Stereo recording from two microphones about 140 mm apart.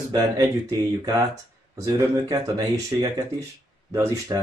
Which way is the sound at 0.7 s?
25° right (ahead or behind).